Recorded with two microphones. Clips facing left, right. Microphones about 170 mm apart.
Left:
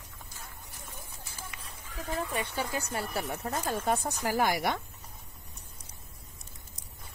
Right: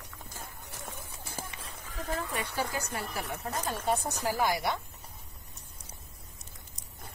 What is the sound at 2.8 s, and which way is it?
Speech, 30° left (ahead or behind).